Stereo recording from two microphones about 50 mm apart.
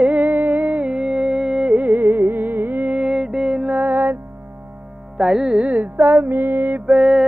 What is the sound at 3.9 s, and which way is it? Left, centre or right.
Music, right.